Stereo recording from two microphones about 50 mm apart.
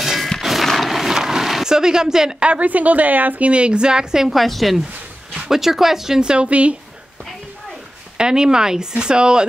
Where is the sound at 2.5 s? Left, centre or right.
Right; by 4.3 s centre.